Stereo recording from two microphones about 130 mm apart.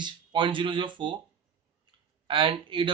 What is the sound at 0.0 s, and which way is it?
Speech, 40° right (ahead or behind).